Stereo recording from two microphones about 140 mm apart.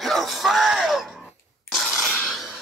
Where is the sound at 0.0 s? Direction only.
Centre (ahead or behind).